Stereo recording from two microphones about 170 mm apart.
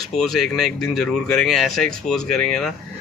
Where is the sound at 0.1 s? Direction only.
Centre (ahead or behind).